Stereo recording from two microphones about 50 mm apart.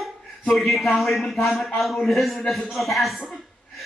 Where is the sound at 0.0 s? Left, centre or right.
Centre.